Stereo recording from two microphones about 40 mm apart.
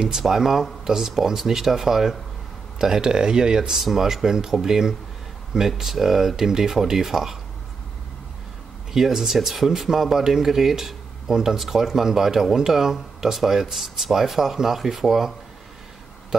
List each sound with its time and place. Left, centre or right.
0.2 s speech: centre
3.7 s speech: centre
8.9 s speech: centre